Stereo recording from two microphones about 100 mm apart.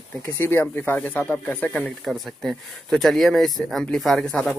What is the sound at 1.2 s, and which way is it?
Speech, 5° left (ahead or behind).